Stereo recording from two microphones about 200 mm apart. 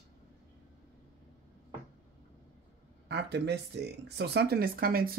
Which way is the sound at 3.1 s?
55° right (ahead or behind).